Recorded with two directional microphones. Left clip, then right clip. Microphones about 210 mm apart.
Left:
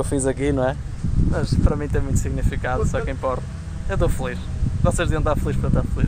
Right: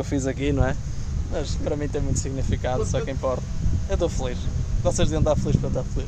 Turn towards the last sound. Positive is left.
turn(degrees=0)  # may be behind; listen again after turning